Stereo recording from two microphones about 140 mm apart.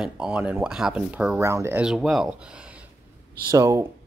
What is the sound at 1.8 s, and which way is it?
Speech, 5° right (ahead or behind).